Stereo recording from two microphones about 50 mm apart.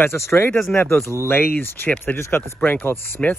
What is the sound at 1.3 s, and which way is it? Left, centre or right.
Speech, left.